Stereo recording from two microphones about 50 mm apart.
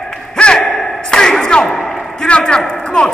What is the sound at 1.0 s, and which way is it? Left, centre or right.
Thump, centre.